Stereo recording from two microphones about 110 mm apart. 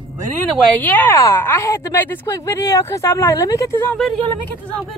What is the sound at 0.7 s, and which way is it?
Speech, 15° left (ahead or behind).